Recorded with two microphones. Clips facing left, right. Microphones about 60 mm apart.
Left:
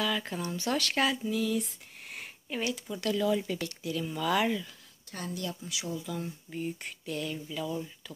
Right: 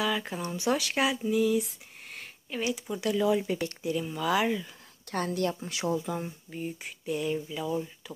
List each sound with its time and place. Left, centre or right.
0.0 s speech: centre
2.0 s a sound: centre
2.6 s speech: centre
5.1 s a woman's voice: right
6.5 s speech: centre